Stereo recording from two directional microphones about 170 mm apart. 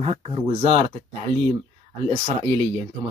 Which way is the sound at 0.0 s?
30° right (ahead or behind).